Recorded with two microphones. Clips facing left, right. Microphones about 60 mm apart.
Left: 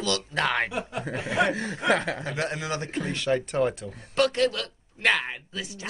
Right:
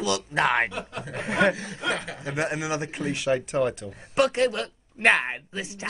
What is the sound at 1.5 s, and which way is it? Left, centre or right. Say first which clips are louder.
Speech: left 5 dB; left.